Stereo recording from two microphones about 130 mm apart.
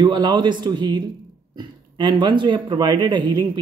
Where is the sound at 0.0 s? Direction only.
35° right (ahead or behind).